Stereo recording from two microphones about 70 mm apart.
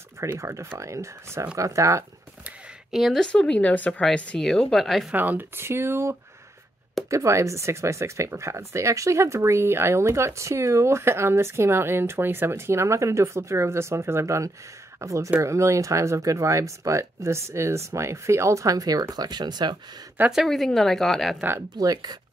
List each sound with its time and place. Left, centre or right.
0.2 s speech: right
2.9 s speech: centre
3.2 s speech: centre
5.1 s speech: right
20.4 s speech: centre
21.7 s speech: right